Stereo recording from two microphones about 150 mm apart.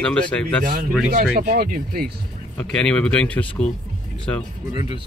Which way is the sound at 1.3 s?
75° right (ahead or behind).